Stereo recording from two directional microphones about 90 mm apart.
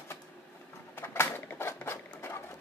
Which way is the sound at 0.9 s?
25° left (ahead or behind).